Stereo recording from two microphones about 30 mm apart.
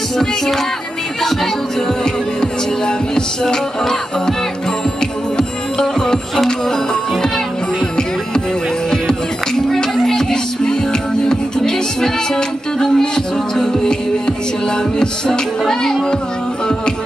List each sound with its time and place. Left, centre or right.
5.8 s music: left
10.0 s music: left
15.0 s music: left